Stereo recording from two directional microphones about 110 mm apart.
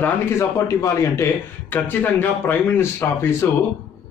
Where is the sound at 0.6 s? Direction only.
25° left (ahead or behind).